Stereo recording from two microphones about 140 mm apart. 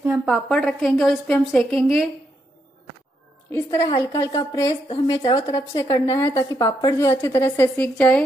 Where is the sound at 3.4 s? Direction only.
20° left (ahead or behind).